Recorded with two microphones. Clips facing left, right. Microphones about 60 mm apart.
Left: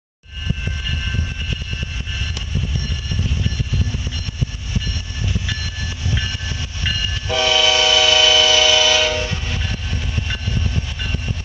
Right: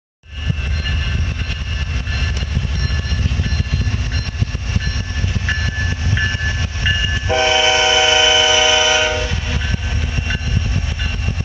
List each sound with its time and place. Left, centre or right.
5.5 s train: right